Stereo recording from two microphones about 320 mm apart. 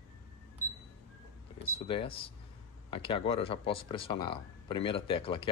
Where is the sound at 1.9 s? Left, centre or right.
Centre.